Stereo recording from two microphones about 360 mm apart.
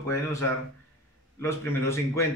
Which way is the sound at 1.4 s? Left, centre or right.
Centre.